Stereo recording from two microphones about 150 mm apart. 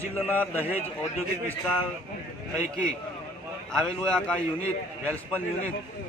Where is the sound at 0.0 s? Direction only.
10° left (ahead or behind).